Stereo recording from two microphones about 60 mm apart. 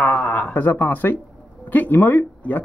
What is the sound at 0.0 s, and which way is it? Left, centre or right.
Speech, left.